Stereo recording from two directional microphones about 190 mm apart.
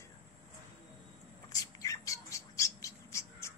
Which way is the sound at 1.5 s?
20° left (ahead or behind).